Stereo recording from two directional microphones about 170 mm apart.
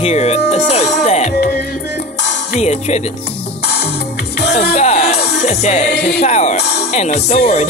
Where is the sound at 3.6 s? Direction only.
75° left (ahead or behind).